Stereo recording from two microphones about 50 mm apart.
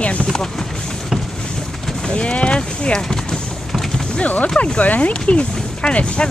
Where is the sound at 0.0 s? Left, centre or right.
Left.